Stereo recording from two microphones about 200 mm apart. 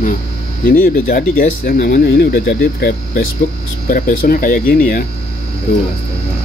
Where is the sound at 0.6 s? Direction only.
45° left (ahead or behind).